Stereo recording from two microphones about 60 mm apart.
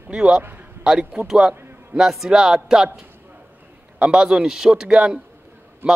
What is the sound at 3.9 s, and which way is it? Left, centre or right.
Speech, centre.